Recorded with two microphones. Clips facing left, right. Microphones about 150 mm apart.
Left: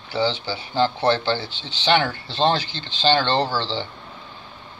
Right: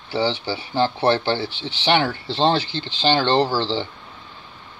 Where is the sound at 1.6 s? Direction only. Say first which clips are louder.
Even; 25° right (ahead or behind).